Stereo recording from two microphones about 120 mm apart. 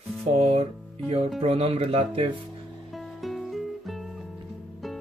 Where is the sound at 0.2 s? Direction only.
55° right (ahead or behind).